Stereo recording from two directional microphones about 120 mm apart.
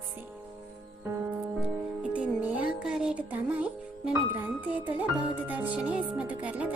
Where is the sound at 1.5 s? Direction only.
10° right (ahead or behind).